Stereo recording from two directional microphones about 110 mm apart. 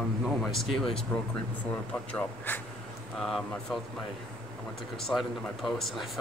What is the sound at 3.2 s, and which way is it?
Speech, centre (ahead or behind).